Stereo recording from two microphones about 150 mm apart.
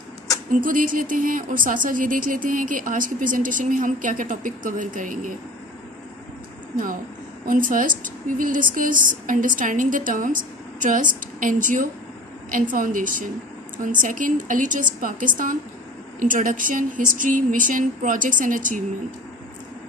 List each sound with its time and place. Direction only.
0.5 s speech: 65° right (ahead or behind)
7.4 s speech: 65° right (ahead or behind)